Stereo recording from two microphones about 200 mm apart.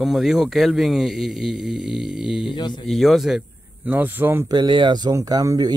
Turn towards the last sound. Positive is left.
turn(degrees=-20)  # may be behind; listen again after turning